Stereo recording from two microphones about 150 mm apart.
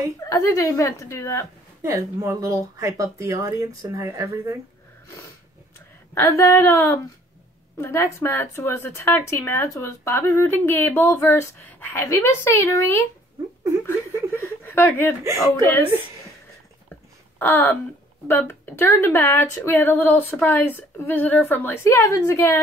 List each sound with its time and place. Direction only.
0.2 s a woman's voice: 20° left (ahead or behind)
1.8 s speech: 20° right (ahead or behind)
6.1 s a woman's voice: 15° left (ahead or behind)
17.4 s a woman's voice: 15° left (ahead or behind)